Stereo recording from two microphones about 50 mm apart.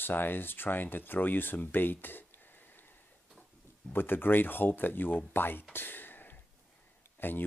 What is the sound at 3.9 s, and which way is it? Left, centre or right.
Speech, left.